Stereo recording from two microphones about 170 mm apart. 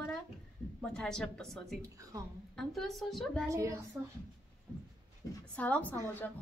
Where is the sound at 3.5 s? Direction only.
20° right (ahead or behind).